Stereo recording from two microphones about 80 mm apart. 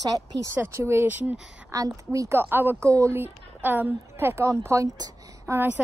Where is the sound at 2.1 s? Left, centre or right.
Right.